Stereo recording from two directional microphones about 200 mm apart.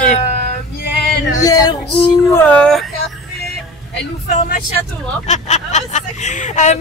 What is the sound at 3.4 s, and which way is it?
Music, 50° left (ahead or behind).